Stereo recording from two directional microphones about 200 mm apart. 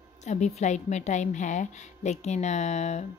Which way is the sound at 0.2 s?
35° left (ahead or behind).